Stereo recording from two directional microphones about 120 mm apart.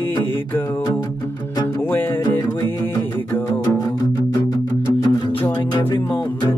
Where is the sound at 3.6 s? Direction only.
30° left (ahead or behind).